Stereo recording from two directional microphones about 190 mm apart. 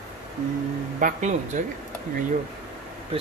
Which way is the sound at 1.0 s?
40° right (ahead or behind).